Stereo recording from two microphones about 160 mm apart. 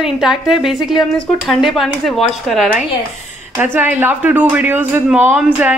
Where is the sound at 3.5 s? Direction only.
10° right (ahead or behind).